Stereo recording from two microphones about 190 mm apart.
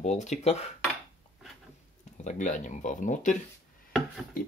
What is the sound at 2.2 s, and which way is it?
Speech, 40° left (ahead or behind).